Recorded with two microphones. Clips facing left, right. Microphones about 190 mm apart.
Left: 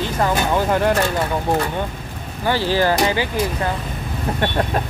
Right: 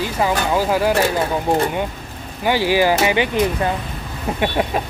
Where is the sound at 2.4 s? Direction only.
15° right (ahead or behind).